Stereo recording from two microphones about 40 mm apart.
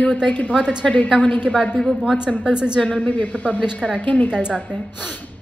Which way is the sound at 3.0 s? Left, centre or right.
Left.